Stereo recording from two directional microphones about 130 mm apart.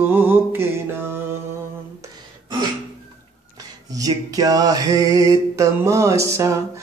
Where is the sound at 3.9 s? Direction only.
30° right (ahead or behind).